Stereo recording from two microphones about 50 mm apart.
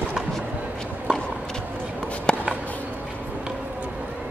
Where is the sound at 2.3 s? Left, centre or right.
Centre.